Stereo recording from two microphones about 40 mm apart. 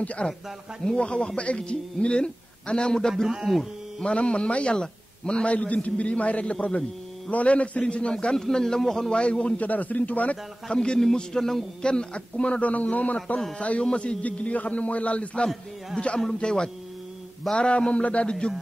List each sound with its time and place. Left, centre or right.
0.2 s a man's voice: centre
3.3 s speech: centre
4.0 s a man's voice: left
8.4 s a man's voice: centre
9.1 s a man's voice: left
9.6 s a man's voice: left
10.7 s a man's voice: left
11.8 s a man's voice: left
14.2 s a man's voice: left
16.3 s a man's voice: left